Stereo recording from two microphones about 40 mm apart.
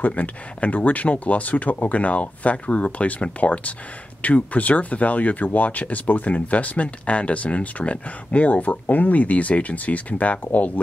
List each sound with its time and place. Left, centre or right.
0.0 s speech: left